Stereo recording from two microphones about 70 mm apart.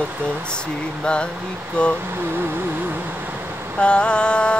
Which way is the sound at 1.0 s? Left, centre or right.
Centre.